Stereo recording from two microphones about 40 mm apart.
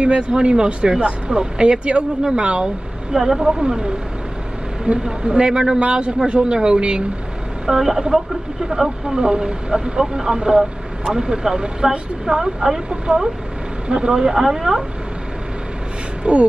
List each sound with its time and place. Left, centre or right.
0.0 s speech: right
3.1 s speech: centre
7.6 s speech: centre
13.1 s speech: right
14.1 s speech: centre
16.3 s speech: right